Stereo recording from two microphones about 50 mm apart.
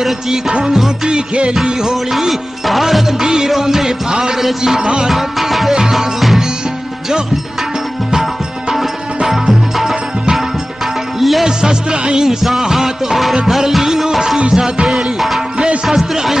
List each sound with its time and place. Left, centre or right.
0.5 s music: centre
5.1 s music: centre
8.1 s music: centre
11.1 s music: centre
11.4 s music: centre
15.5 s music: centre
15.9 s speech: centre